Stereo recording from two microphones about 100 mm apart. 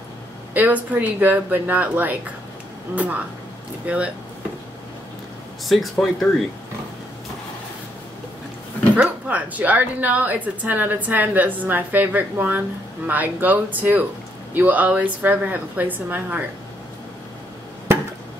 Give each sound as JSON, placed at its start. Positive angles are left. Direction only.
{"t": 0.6, "sound": "a woman's voice", "side_deg": -15}
{"t": 5.7, "sound": "speech", "side_deg": 0}
{"t": 8.9, "sound": "a woman's voice", "side_deg": -15}